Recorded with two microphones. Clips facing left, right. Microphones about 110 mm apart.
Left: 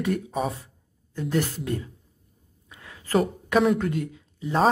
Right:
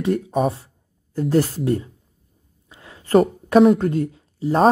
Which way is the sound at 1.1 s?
40° right (ahead or behind).